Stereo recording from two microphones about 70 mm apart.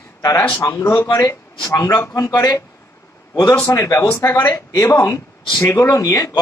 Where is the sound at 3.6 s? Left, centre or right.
Left.